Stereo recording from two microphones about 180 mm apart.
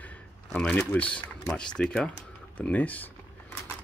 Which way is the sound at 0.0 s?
10° left (ahead or behind).